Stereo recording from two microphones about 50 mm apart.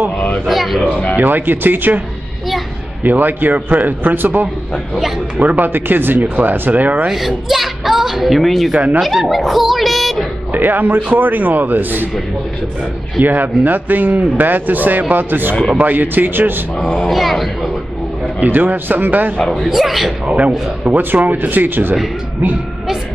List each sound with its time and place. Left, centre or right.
0.5 s speech: centre
1.1 s a man's voice: right
3.0 s a man's voice: right
7.1 s speech: centre
10.5 s a man's voice: right
13.2 s a man's voice: right
17.1 s a sound: centre
18.4 s a man's voice: right
19.3 s a man's voice: centre
19.6 s speech: centre
20.2 s speech: right
21.0 s a man's voice: right